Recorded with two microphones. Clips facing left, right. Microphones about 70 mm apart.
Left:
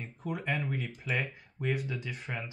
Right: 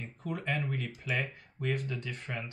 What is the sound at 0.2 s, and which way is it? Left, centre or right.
Speech, centre.